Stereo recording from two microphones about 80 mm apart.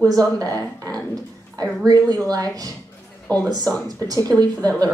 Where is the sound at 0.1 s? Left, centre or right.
Right.